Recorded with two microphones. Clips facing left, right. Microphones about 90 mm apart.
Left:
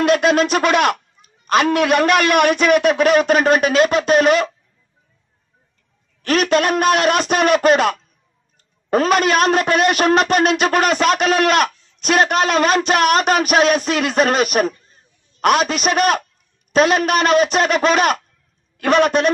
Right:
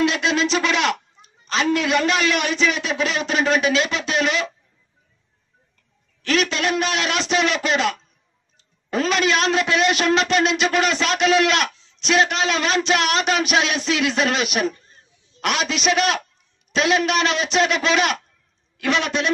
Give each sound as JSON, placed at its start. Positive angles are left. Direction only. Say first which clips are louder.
{"t": 0.0, "sound": "speech", "louder": "left 5 dB", "side_deg": 50}
{"t": 6.2, "sound": "speech", "louder": "left 5 dB", "side_deg": 50}